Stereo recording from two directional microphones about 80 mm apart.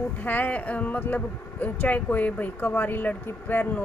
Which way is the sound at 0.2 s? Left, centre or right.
Left.